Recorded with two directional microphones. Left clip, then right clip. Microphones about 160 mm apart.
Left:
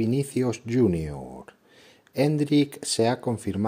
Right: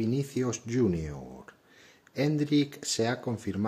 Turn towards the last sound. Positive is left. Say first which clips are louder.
# left 5 dB
turn(degrees=25)  # may be behind; listen again after turning